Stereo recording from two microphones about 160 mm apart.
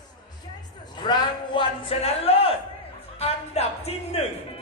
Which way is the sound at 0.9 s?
30° left (ahead or behind).